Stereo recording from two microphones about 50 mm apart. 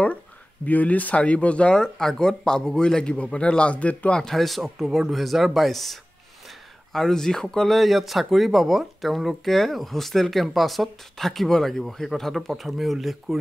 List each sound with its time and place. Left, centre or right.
0.7 s speech: left
4.2 s speech: centre